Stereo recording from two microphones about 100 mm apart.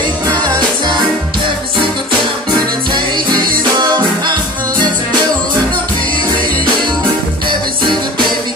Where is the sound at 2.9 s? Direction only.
50° right (ahead or behind).